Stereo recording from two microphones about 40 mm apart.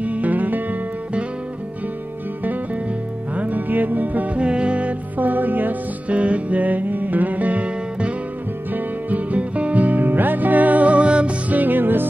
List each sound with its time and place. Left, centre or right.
0.0 s music: right
2.4 s music: right
4.4 s music: right
5.2 s music: right
6.0 s music: right
11.4 s music: right